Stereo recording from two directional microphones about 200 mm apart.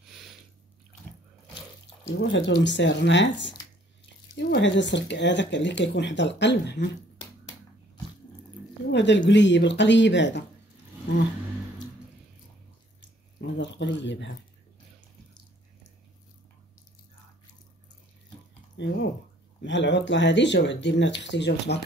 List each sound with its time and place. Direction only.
0.1 s a sound: centre (ahead or behind)
2.0 s speech: 65° left (ahead or behind)
8.9 s speech: 60° left (ahead or behind)
13.0 s speech: 60° left (ahead or behind)
18.8 s speech: 65° left (ahead or behind)